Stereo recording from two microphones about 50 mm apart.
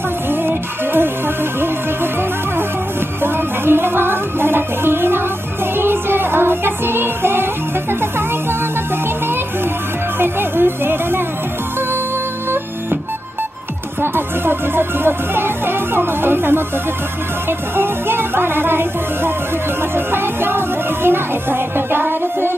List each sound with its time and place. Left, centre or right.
0.3 s music: right
3.2 s music: right
10.1 s music: right
14.0 s music: right